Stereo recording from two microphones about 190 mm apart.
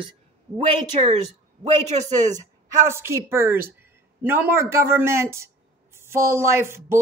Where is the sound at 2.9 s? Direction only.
15° right (ahead or behind).